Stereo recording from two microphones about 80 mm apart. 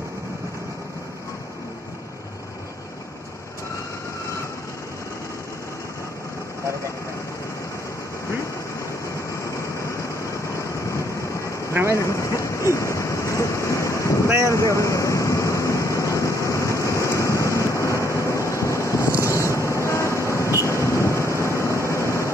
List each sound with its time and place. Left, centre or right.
10.6 s vehicle: left
11.9 s a sound: left
14.2 s vehicle: right
14.5 s vehicle: left